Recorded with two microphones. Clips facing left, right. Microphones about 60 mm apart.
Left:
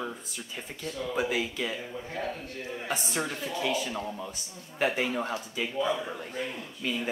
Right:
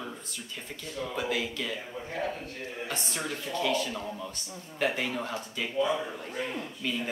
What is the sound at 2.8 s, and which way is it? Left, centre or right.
Speech, centre.